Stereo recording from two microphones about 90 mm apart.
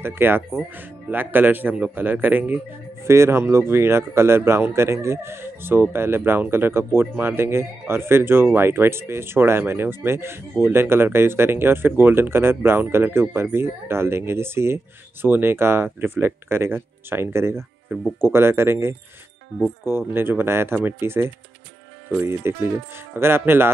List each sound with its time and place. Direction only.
0.0 s speech: 25° right (ahead or behind)
20.1 s speech: 25° right (ahead or behind)